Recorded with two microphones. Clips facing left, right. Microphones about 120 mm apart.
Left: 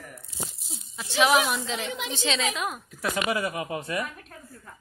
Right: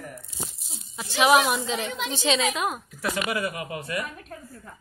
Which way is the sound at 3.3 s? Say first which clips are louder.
Left 1 dB; 25° left (ahead or behind).